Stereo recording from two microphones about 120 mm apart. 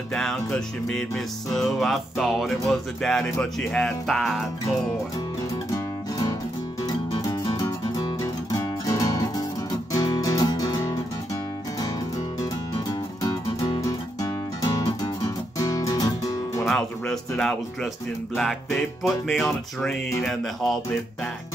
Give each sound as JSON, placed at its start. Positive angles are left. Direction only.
{"t": 0.1, "sound": "music", "side_deg": 5}
{"t": 6.8, "sound": "music", "side_deg": 30}
{"t": 12.4, "sound": "music", "side_deg": 30}
{"t": 16.6, "sound": "music", "side_deg": 5}